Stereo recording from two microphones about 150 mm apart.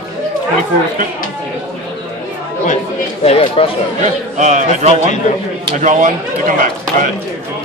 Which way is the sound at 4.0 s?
50° right (ahead or behind).